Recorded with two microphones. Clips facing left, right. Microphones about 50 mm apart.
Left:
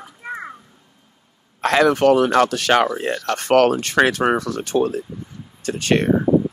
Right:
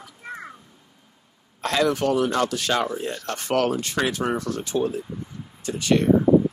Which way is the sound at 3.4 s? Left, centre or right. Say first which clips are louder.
Left 7 dB; left.